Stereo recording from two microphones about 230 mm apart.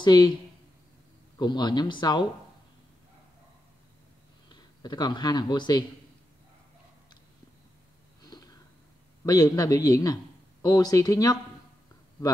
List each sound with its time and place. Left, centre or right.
0.0 s speech: centre
1.4 s speech: centre
4.5 s a man's voice: centre
8.2 s a sound: centre
9.2 s a man's voice: centre